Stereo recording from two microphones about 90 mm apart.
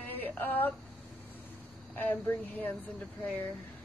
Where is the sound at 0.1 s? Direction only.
20° left (ahead or behind).